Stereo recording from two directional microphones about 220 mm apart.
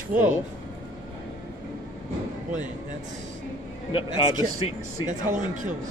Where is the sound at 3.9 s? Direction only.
25° left (ahead or behind).